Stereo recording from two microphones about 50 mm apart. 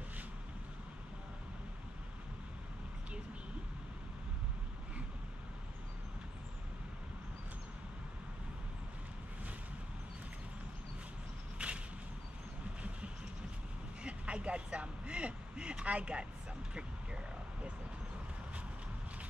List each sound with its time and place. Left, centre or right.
11.5 s whip: right
14.0 s speech: right